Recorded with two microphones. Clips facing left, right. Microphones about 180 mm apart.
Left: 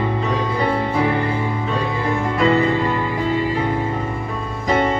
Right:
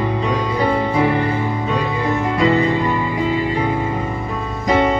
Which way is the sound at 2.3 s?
15° right (ahead or behind).